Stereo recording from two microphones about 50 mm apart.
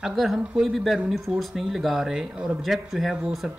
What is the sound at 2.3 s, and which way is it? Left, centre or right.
Speech, centre.